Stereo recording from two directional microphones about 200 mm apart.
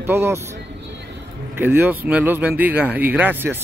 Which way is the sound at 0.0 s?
10° right (ahead or behind).